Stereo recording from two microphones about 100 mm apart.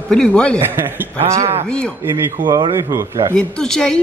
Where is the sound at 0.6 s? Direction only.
25° right (ahead or behind).